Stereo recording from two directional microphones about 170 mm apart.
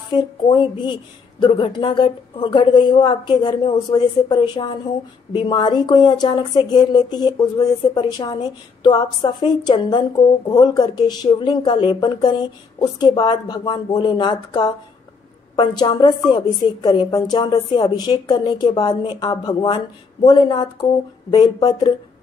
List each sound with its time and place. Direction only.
0.1 s speech: 25° left (ahead or behind)